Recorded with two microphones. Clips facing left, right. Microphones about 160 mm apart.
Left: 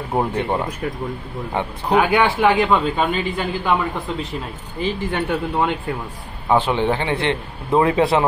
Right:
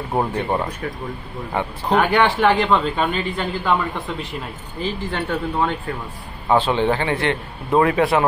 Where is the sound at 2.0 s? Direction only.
5° left (ahead or behind).